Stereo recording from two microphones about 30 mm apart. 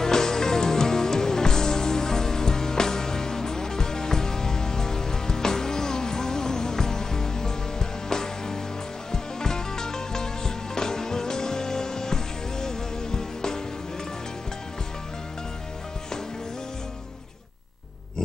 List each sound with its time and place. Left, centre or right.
0.0 s music: centre